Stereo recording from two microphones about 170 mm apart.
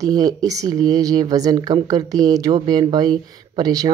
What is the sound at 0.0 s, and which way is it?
Speech, 20° right (ahead or behind).